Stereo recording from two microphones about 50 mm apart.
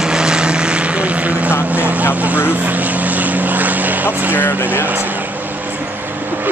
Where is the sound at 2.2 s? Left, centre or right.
Right.